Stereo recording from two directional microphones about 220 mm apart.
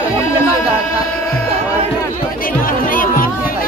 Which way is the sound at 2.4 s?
40° left (ahead or behind).